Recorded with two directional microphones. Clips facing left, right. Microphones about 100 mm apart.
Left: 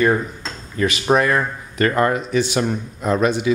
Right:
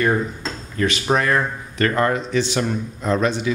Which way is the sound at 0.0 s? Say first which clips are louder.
Left 2 dB; 5° left (ahead or behind).